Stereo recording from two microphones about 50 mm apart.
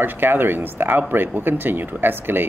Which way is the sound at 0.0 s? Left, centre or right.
Right.